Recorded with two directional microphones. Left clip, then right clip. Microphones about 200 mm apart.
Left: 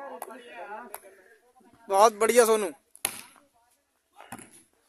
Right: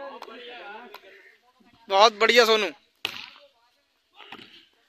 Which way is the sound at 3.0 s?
25° left (ahead or behind).